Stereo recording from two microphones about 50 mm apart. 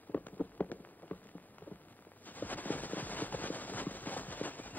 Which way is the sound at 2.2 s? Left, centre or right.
Left.